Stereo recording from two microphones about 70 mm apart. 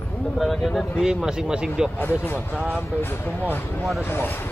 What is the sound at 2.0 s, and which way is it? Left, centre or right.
Speech, left.